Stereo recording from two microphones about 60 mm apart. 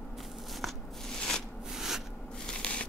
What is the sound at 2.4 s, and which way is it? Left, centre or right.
Shuffling cards, centre.